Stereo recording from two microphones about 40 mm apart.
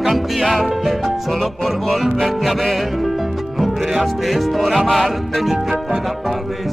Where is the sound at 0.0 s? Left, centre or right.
Centre.